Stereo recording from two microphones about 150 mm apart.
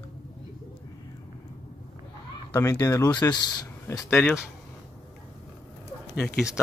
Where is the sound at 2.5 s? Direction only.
20° left (ahead or behind).